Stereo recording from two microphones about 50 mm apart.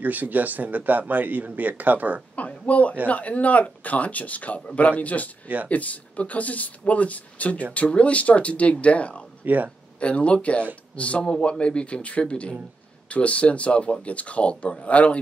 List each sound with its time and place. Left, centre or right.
0.0 s speech: right
2.3 s a sound: left
3.1 s a man's voice: left
9.4 s speech: right
9.9 s speech: left